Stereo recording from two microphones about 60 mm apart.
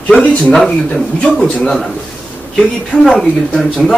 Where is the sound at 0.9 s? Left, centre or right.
Left.